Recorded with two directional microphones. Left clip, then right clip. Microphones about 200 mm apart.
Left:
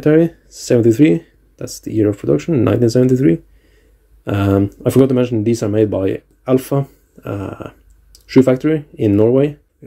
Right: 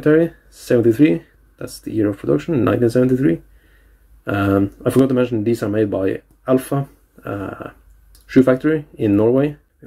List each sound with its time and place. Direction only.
0.0 s speech: 25° left (ahead or behind)